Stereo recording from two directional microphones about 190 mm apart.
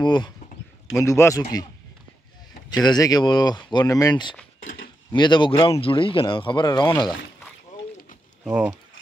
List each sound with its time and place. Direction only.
0.0 s speech: 25° left (ahead or behind)
2.7 s speech: 20° left (ahead or behind)
8.5 s speech: 5° right (ahead or behind)